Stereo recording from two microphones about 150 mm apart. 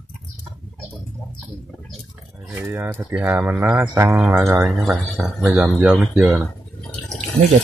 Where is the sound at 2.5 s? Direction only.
15° right (ahead or behind).